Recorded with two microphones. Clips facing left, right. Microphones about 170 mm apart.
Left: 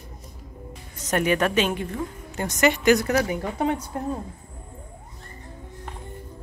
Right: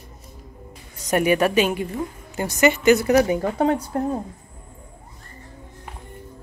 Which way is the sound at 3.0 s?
20° right (ahead or behind).